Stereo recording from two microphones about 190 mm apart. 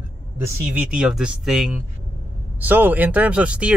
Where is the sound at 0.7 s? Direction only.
5° right (ahead or behind).